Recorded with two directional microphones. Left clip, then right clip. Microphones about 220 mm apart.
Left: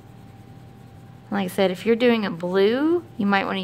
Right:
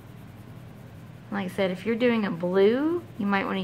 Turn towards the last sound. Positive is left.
turn(degrees=45)  # may be behind; listen again after turning